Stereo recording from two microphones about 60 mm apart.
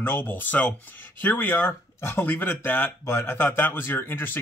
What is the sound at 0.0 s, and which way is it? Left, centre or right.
Speech, left.